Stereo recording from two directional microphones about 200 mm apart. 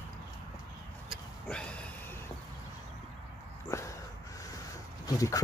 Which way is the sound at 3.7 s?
15° left (ahead or behind).